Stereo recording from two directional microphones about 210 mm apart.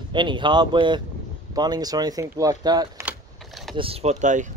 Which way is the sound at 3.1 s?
Centre (ahead or behind).